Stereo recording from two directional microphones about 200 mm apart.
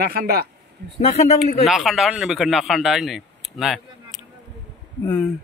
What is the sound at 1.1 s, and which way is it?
Speech, 35° left (ahead or behind).